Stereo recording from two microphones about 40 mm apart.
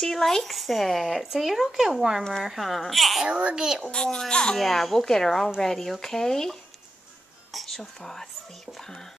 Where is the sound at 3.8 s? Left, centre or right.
Centre.